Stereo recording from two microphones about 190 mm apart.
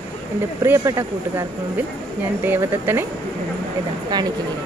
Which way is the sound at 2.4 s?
10° right (ahead or behind).